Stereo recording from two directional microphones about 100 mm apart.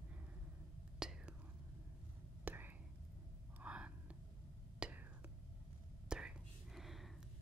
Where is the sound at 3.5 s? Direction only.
15° right (ahead or behind).